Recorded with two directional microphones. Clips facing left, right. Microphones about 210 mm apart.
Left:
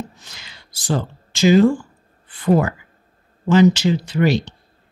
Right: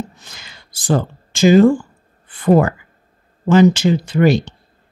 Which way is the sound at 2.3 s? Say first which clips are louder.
Right 4 dB; 50° right (ahead or behind).